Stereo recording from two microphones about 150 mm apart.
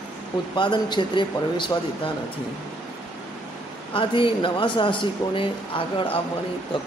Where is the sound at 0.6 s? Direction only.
30° left (ahead or behind).